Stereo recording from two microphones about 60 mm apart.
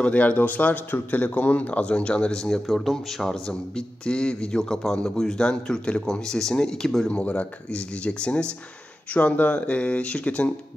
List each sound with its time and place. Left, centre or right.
0.0 s a man's voice: left
2.6 s speech: centre
7.1 s a man's voice: centre